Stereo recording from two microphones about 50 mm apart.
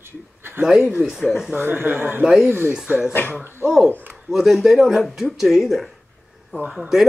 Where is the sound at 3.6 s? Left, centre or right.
Centre.